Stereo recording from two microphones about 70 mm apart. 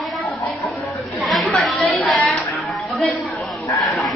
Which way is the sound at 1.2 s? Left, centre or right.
Centre.